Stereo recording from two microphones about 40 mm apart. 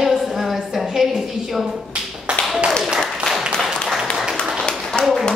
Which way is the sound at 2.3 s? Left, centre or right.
Right.